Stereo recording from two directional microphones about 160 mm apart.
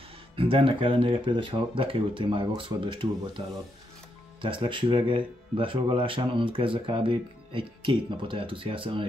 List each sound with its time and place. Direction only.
0.4 s speech: 35° right (ahead or behind)